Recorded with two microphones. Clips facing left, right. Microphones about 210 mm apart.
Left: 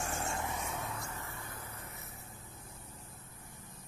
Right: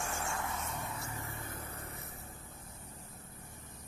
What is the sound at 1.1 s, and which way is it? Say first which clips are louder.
Vehicle: right 2 dB; 15° right (ahead or behind).